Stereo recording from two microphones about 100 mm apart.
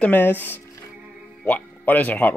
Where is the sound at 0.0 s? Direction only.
20° left (ahead or behind).